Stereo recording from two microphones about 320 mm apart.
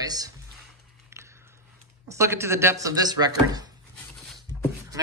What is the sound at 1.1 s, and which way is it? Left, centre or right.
Biting, centre.